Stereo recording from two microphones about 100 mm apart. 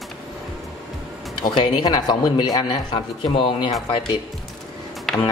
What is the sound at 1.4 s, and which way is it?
A man's voice, 50° left (ahead or behind).